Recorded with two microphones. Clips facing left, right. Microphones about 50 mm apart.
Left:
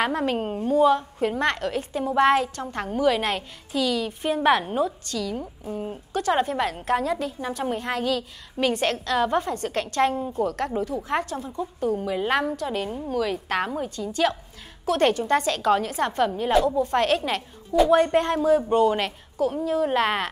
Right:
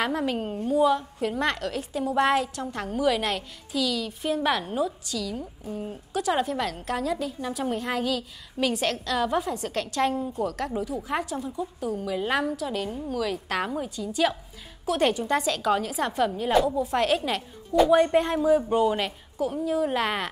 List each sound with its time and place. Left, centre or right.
0.0 s a woman's voice: centre
11.9 s a woman's voice: centre
14.1 s a woman's voice: centre
16.6 s a woman's voice: centre